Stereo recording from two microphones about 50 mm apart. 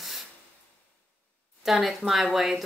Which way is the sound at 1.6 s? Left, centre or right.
Centre.